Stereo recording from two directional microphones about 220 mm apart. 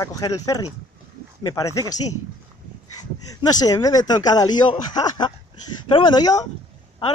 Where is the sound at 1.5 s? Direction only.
15° left (ahead or behind).